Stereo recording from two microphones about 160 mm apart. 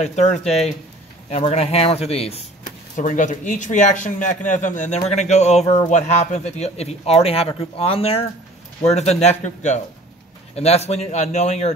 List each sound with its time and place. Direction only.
0.0 s a man's voice: 45° left (ahead or behind)
0.4 s speech: centre (ahead or behind)
1.3 s speech: 40° left (ahead or behind)
3.0 s a man's voice: 55° left (ahead or behind)